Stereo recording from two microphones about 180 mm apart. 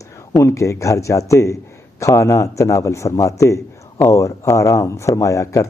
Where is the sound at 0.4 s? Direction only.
15° left (ahead or behind).